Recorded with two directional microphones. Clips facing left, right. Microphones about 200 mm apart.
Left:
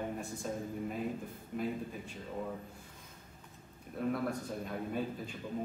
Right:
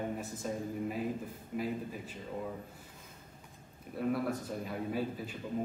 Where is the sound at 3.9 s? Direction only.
5° right (ahead or behind).